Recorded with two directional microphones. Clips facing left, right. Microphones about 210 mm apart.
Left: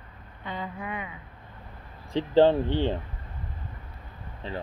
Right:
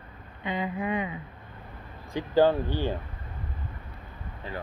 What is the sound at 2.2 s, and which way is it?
Speech, 25° left (ahead or behind).